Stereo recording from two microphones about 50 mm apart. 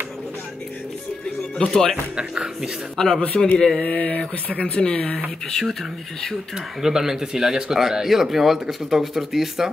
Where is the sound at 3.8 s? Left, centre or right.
Left.